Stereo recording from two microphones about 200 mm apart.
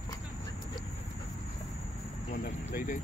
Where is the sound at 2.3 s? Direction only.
45° left (ahead or behind).